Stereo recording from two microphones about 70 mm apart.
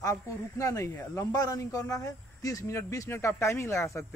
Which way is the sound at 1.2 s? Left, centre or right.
Left.